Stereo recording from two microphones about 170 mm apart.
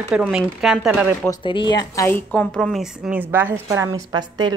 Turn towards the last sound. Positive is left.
turn(degrees=-25)  # may be behind; listen again after turning